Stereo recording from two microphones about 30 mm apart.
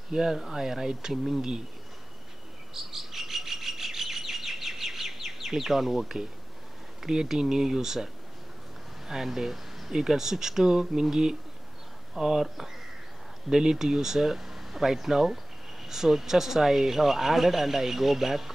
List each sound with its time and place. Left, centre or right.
0.1 s speech: right
2.7 s chirp: centre
7.1 s speech: centre
12.2 s speech: centre
13.5 s speech: right